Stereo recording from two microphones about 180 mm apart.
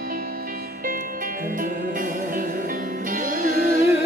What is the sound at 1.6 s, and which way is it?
Music, 50° right (ahead or behind).